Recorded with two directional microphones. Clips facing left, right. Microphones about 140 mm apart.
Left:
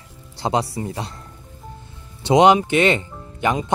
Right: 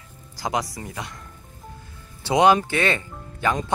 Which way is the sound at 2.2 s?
20° left (ahead or behind).